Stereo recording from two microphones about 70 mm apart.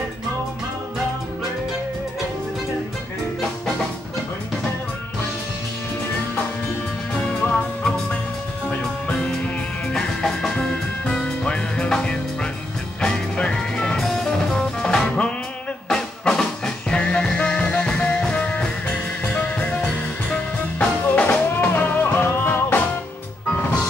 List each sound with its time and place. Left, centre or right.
7.2 s music: centre; by 22.8 s left